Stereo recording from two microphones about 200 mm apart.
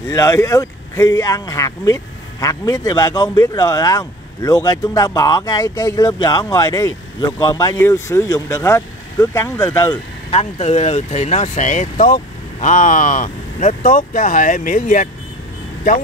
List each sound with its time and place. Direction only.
0.0 s speech: 15° left (ahead or behind)
10.3 s speech: 30° left (ahead or behind)